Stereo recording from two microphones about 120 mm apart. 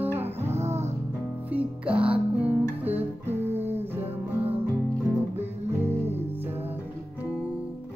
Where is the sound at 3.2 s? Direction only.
65° right (ahead or behind).